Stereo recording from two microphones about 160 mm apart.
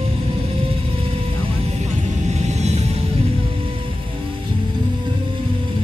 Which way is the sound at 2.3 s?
45° right (ahead or behind).